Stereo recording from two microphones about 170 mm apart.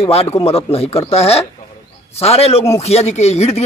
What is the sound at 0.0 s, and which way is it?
A man's voice, 35° left (ahead or behind).